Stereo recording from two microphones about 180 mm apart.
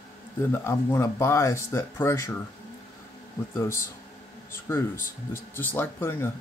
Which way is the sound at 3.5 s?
15° left (ahead or behind).